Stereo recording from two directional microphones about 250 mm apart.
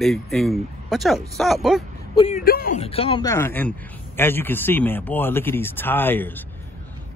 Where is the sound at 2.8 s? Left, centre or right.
Left; by 6.4 s centre.